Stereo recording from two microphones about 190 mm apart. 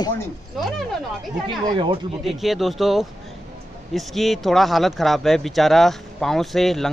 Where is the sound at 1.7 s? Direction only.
25° right (ahead or behind).